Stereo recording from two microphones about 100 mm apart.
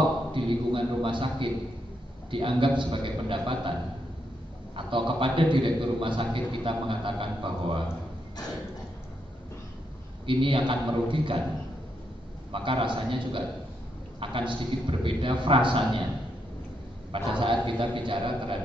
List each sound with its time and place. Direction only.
0.3 s a man's voice: 55° right (ahead or behind)
4.7 s a man's voice: 55° right (ahead or behind)
10.2 s a man's voice: 60° right (ahead or behind)
12.5 s a man's voice: 60° right (ahead or behind)
17.1 s a man's voice: 55° right (ahead or behind)